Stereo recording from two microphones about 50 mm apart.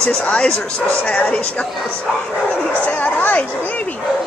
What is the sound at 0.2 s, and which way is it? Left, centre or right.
A woman's voice, left.